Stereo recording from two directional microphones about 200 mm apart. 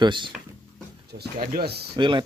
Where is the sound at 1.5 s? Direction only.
55° right (ahead or behind).